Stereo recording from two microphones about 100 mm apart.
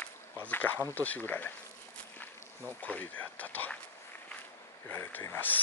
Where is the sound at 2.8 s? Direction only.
15° left (ahead or behind).